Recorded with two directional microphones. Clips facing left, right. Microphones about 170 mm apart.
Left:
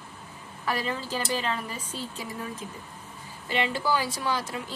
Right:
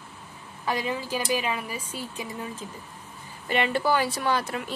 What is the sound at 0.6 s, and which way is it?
A woman's voice, 20° right (ahead or behind).